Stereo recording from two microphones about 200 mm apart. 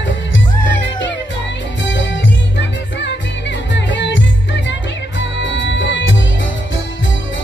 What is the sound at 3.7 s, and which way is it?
Music, 65° left (ahead or behind).